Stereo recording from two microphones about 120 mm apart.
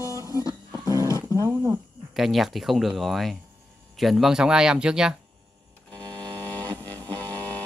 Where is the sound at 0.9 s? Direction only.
25° left (ahead or behind).